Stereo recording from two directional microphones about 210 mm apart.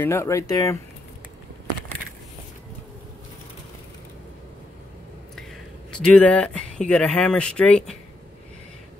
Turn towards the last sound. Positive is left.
turn(degrees=5)  # may be behind; listen again after turning